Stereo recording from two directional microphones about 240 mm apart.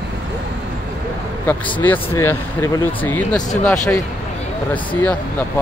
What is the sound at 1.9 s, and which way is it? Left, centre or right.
Speech, centre.